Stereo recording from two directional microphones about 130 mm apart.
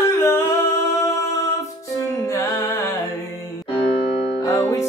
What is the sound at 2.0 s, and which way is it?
Music, 25° left (ahead or behind).